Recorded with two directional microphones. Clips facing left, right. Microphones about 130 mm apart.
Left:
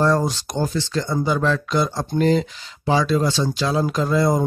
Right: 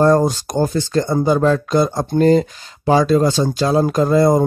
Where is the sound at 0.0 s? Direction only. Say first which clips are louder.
Right 6 dB; 45° right (ahead or behind).